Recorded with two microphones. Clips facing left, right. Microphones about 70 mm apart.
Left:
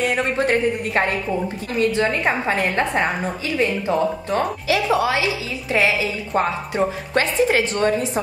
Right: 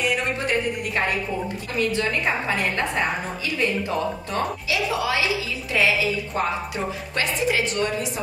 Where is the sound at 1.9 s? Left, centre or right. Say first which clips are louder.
Left 4 dB; left.